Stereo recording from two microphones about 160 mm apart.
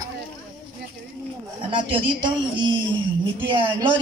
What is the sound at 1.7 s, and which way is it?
A man's voice, 30° right (ahead or behind).